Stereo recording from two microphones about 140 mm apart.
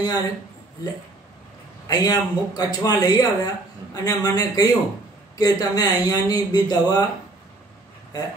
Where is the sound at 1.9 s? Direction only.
25° left (ahead or behind).